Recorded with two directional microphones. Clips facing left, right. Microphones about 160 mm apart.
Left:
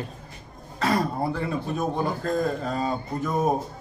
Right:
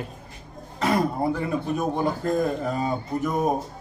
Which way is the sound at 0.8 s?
20° right (ahead or behind).